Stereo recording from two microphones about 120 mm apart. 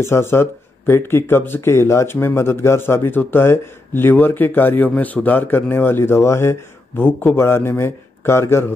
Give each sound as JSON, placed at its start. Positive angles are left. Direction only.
{"t": 0.0, "sound": "speech", "side_deg": 20}